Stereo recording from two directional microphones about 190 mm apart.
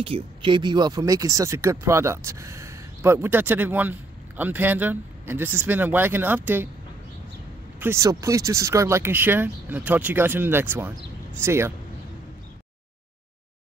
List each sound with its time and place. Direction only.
0.0 s speech: 30° right (ahead or behind); by 6.7 s 10° right (ahead or behind)
7.8 s speech: 15° right (ahead or behind)